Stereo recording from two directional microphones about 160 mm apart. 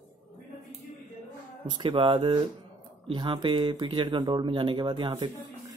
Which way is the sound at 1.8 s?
35° right (ahead or behind).